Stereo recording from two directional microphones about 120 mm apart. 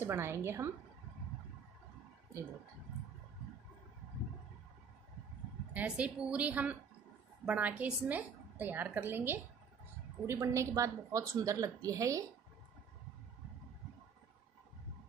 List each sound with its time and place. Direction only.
0.0 s a woman's voice: 20° right (ahead or behind)
5.7 s a woman's voice: 10° right (ahead or behind); by 12.3 s 30° right (ahead or behind)